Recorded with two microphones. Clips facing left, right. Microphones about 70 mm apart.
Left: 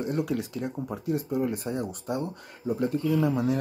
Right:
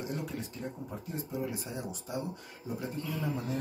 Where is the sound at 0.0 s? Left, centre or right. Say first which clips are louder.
Left 8 dB; left.